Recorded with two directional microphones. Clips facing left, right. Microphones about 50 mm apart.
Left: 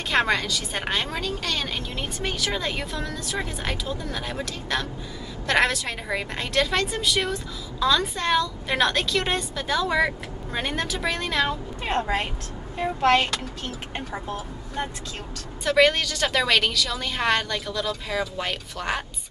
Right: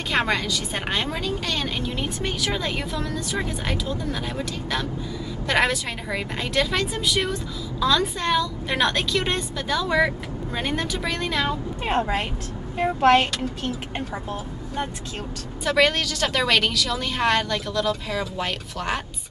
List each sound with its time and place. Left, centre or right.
0.1 s a woman's voice: centre
12.7 s speech: centre
15.6 s a woman's voice: centre